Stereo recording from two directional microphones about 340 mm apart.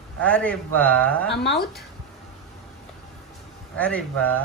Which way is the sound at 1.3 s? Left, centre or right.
Left.